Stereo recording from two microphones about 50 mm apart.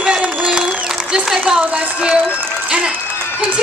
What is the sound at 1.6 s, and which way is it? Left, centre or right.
Speech, right.